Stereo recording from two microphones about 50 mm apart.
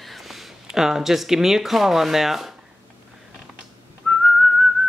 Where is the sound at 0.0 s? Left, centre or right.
Centre.